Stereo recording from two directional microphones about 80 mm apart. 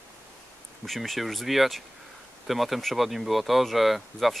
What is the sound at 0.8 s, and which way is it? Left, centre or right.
Speech, centre.